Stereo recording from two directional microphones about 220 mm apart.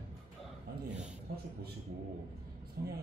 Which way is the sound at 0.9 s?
45° right (ahead or behind).